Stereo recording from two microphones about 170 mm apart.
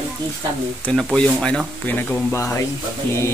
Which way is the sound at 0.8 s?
5° left (ahead or behind).